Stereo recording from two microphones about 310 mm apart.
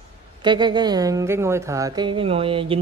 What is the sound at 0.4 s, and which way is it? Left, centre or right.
A woman's voice, centre.